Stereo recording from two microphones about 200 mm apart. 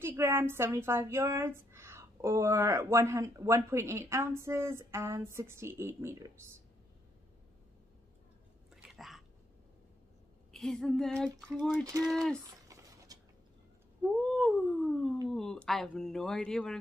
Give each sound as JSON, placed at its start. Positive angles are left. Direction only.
{"t": 0.0, "sound": "a woman's voice", "side_deg": -10}
{"t": 8.7, "sound": "chewing", "side_deg": 0}
{"t": 10.5, "sound": "speech", "side_deg": 0}
{"t": 11.8, "sound": "a woman's voice", "side_deg": -20}
{"t": 12.1, "sound": "speech", "side_deg": 5}
{"t": 13.1, "sound": "a sound", "side_deg": -20}
{"t": 14.0, "sound": "cat", "side_deg": 0}
{"t": 15.2, "sound": "speech", "side_deg": 0}